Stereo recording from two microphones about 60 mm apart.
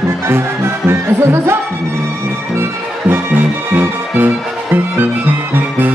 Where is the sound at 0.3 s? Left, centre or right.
Right.